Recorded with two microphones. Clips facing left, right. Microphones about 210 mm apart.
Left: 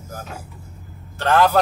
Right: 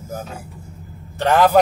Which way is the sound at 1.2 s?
15° right (ahead or behind).